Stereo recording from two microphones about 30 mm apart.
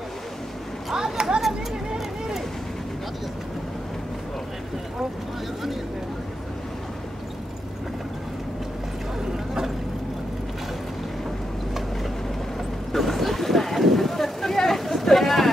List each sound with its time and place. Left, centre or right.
0.9 s speech: centre
12.9 s boat: centre